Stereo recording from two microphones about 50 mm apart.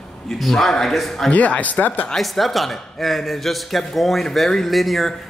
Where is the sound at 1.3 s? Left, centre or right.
Left.